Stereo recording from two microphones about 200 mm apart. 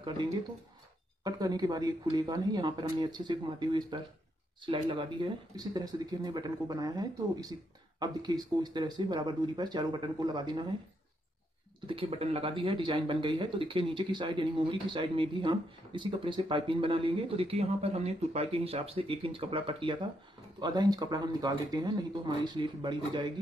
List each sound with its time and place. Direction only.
1.2 s speech: 20° right (ahead or behind)
11.9 s speech: 30° right (ahead or behind)